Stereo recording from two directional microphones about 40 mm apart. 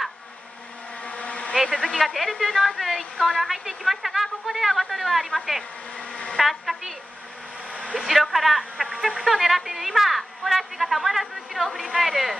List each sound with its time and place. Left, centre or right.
1.0 s vehicle: left
1.6 s a woman's voice: centre
5.9 s insect: left
6.3 s speech: centre
7.9 s a woman's voice: centre